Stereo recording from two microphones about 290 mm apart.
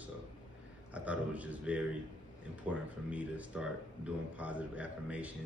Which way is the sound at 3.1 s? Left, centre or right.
Centre.